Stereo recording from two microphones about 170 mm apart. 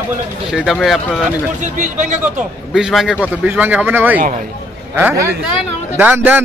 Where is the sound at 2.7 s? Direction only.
5° right (ahead or behind).